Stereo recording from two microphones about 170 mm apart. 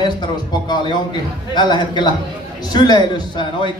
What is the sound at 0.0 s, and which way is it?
A man's voice, 25° left (ahead or behind).